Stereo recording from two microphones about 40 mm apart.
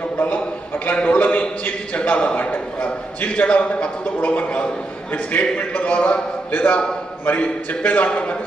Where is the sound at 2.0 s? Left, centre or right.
Left.